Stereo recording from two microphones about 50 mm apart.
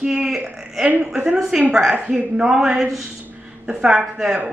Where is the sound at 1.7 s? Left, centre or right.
Centre.